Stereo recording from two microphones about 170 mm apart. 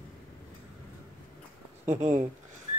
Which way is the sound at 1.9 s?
45° right (ahead or behind).